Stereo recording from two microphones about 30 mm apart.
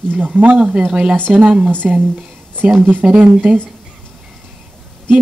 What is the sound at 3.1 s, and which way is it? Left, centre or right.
Speech, right.